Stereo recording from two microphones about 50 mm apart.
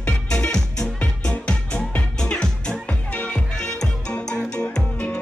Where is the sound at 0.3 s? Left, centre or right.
Centre.